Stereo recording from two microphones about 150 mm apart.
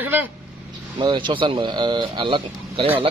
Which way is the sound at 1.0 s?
30° right (ahead or behind).